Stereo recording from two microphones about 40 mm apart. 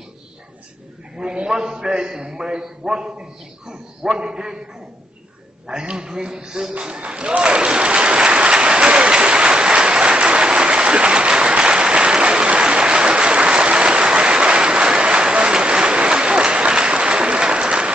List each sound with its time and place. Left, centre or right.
1.2 s a man's voice: right
5.7 s a man's voice: right
7.1 s applause: right